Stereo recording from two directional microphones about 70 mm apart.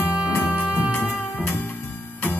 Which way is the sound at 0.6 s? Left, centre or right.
Centre.